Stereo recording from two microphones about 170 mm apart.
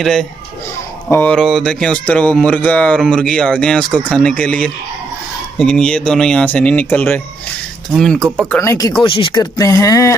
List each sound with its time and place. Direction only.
0.0 s speech: 5° left (ahead or behind)
8.5 s speech: 20° left (ahead or behind)
9.0 s speech: 30° left (ahead or behind)